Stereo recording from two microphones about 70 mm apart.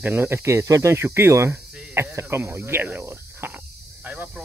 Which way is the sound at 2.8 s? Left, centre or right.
Right.